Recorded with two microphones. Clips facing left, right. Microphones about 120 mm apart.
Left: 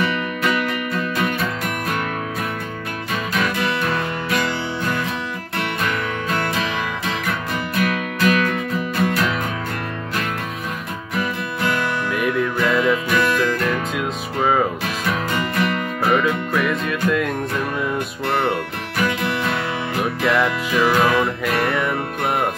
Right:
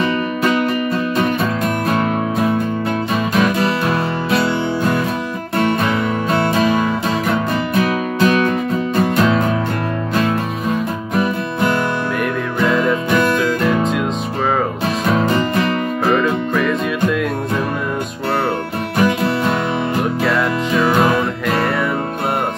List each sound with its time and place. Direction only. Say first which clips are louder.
0.0 s music: right 4 dB; 30° right (ahead or behind)
3.3 s music: right 5 dB; 30° right (ahead or behind)
6.3 s music: right 8 dB; 30° right (ahead or behind)
11.1 s music: right 6 dB; 30° right (ahead or behind)
15.0 s music: right 7 dB; 30° right (ahead or behind)
16.2 s music: right 3 dB; 5° left (ahead or behind)
18.9 s music: right 5 dB; 30° right (ahead or behind)
20.0 s music: left 1 dB; centre (ahead or behind)
20.8 s music: right 1 dB; 30° right (ahead or behind)